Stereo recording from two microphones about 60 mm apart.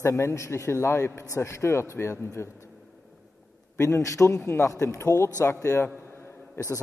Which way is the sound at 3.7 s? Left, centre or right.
Left.